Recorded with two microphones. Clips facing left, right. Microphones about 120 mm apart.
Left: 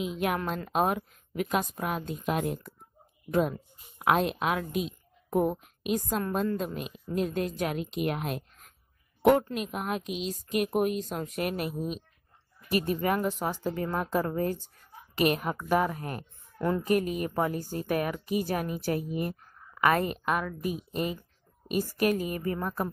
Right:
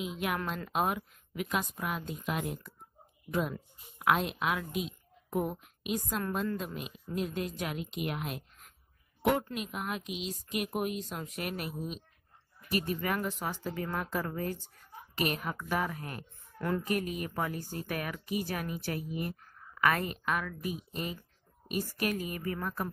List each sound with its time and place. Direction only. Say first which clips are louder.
0.5 s a woman's voice: left 4 dB; 40° left (ahead or behind)
16.5 s a woman's voice: left 4 dB; 25° left (ahead or behind)
16.8 s a woman's voice: left 6 dB; 40° left (ahead or behind)